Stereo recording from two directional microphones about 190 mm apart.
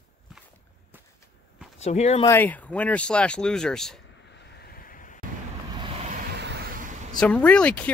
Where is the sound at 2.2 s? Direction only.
10° left (ahead or behind).